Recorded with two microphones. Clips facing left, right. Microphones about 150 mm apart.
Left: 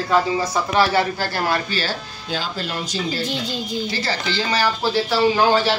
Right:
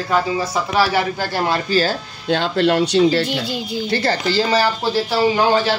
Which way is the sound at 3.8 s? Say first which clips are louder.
Right 5 dB; 55° right (ahead or behind).